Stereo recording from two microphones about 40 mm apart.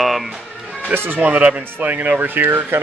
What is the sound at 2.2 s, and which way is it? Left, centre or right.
Speech, right.